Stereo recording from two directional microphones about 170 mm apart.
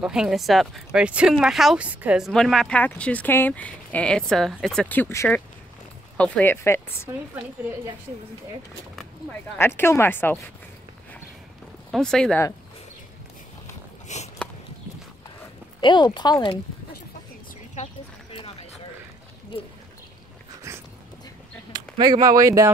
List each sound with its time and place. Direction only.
0.0 s speech: 5° right (ahead or behind); by 7.1 s 15° left (ahead or behind)
9.6 s speech: 15° left (ahead or behind)
11.9 s speech: 5° left (ahead or behind)
14.0 s biting: 40° left (ahead or behind)
15.8 s speech: 25° left (ahead or behind)
18.3 s a sound: 30° left (ahead or behind)
20.7 s a sound: 15° right (ahead or behind)
21.7 s speech: 25° right (ahead or behind)